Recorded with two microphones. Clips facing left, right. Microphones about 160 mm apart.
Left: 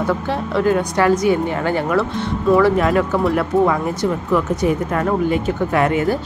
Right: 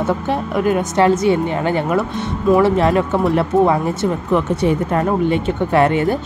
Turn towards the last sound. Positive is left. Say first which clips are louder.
# right 2 dB
turn(degrees=-30)  # may be behind; listen again after turning